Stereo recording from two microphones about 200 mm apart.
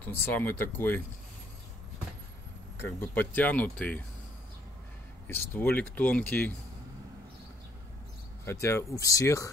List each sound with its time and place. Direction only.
0.0 s speech: 10° left (ahead or behind)
3.0 s speech: 10° left (ahead or behind)
5.3 s speech: 10° left (ahead or behind)
8.5 s speech: 15° left (ahead or behind)